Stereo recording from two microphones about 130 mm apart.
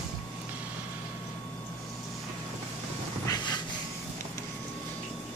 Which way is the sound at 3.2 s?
30° left (ahead or behind).